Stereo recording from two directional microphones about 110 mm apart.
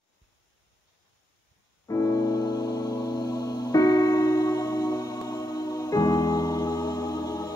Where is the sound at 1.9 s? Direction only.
30° left (ahead or behind).